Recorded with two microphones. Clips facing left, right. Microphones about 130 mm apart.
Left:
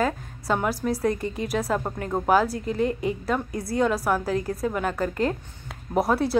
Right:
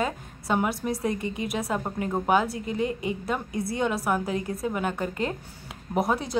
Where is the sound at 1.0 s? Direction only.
55° left (ahead or behind).